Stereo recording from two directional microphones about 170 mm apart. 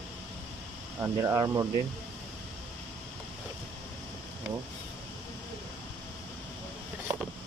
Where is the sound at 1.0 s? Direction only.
15° right (ahead or behind).